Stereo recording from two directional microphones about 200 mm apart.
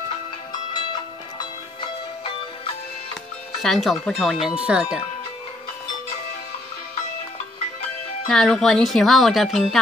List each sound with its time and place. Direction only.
1.8 s music: 25° left (ahead or behind)
3.6 s speech: centre (ahead or behind)
8.3 s speech: centre (ahead or behind)